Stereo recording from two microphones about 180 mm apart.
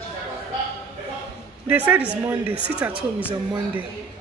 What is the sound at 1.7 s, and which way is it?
A woman's voice, 10° right (ahead or behind).